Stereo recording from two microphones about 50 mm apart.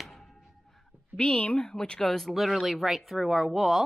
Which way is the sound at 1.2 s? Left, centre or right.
Centre.